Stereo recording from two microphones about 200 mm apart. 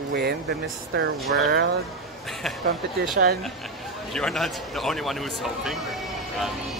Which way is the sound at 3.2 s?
55° right (ahead or behind).